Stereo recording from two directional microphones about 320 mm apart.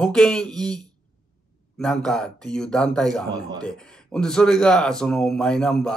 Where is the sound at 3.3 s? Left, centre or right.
Centre.